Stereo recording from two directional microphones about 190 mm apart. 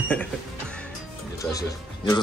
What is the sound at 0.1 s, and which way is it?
Music, 5° left (ahead or behind).